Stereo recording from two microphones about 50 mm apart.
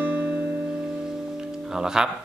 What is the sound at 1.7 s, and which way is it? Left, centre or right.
Music, centre.